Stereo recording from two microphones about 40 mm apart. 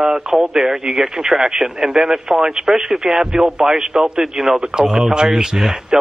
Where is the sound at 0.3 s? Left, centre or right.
Right.